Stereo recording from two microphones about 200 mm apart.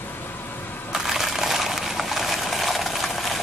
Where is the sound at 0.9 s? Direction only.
Centre (ahead or behind).